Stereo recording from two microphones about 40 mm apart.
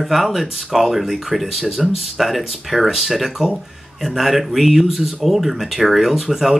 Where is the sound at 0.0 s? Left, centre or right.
Centre.